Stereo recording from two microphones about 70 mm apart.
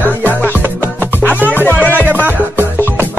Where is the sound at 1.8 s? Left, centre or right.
Left.